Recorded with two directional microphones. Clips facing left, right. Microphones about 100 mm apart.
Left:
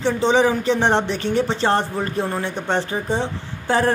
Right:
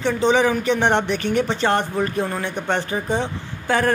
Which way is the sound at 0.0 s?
30° left (ahead or behind).